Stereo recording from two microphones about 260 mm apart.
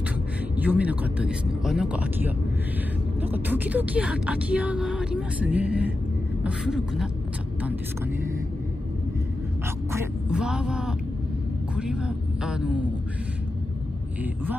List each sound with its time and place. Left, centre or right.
0.6 s speech: centre
9.9 s speech: centre
14.2 s speech: centre